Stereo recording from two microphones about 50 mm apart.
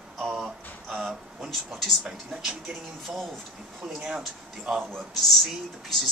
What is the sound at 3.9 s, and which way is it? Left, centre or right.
Music, centre.